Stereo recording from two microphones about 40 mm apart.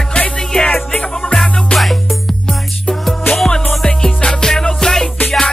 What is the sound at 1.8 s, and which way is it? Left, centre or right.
Music, centre.